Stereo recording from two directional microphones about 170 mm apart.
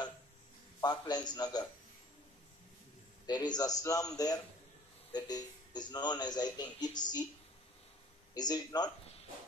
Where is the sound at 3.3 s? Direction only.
25° left (ahead or behind).